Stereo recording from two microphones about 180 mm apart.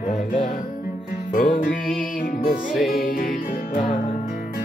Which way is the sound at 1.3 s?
50° left (ahead or behind).